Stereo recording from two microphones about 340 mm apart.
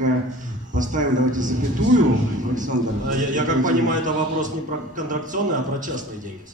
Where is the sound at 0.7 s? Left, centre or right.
Right.